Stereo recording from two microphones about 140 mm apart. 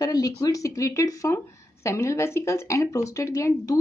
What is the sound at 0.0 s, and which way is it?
A woman's voice, 25° left (ahead or behind).